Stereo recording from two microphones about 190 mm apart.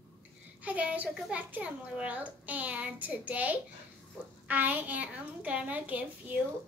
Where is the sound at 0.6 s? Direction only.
5° right (ahead or behind).